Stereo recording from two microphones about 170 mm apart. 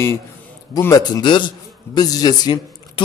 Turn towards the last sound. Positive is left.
turn(degrees=25)  # may be behind; listen again after turning